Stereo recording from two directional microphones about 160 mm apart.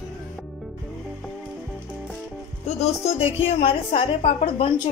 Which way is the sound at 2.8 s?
40° left (ahead or behind).